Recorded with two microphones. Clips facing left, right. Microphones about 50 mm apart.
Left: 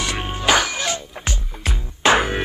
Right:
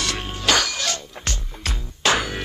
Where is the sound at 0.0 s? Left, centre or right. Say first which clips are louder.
Left 3 dB; centre.